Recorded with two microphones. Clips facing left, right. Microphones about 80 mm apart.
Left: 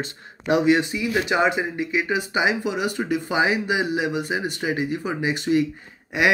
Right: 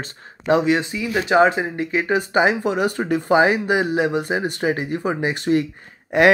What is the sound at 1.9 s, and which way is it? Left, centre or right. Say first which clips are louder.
Speech: right 3 dB; right.